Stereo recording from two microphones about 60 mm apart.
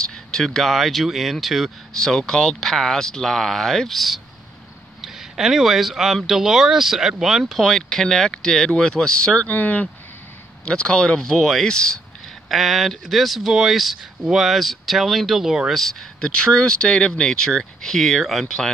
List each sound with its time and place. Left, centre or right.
0.0 s speech: centre
2.0 s speech: centre
9.5 s speech: left
10.6 s speech: centre
12.4 s speech: centre
15.7 s speech: centre